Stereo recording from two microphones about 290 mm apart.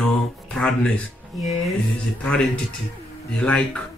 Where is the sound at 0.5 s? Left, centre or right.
Centre.